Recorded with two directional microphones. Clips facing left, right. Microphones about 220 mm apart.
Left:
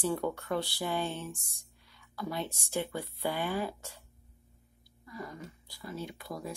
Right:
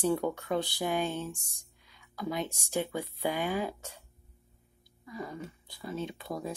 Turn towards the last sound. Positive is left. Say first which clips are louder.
# right 4 dB
turn(degrees=-25)  # may be behind; listen again after turning